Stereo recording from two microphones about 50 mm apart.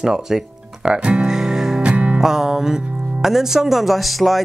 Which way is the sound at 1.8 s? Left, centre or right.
Right.